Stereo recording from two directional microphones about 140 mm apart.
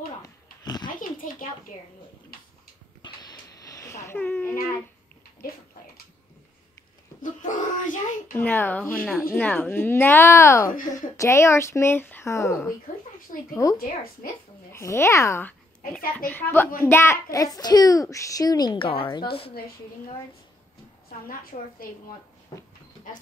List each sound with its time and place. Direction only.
1.2 s a sound: 70° left (ahead or behind)
3.0 s a sound: 25° left (ahead or behind)
7.2 s a child's voice: 75° left (ahead or behind)
8.4 s a woman's voice: 15° left (ahead or behind)
13.3 s a woman's voice: 60° left (ahead or behind)
14.7 s a child's voice: 20° left (ahead or behind); by 19.2 s 40° left (ahead or behind)
21.3 s a woman's voice: 90° left